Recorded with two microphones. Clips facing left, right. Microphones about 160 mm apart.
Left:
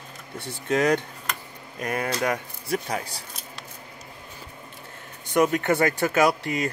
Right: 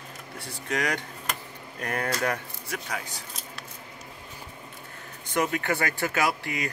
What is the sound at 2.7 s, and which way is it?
Speech, 35° left (ahead or behind).